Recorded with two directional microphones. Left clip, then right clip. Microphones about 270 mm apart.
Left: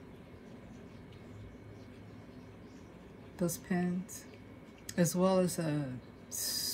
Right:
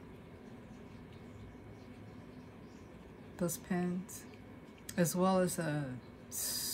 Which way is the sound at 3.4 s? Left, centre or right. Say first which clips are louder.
Left 2 dB; centre.